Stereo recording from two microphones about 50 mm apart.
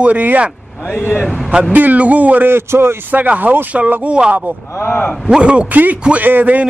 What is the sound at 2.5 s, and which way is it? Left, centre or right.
Speech, right.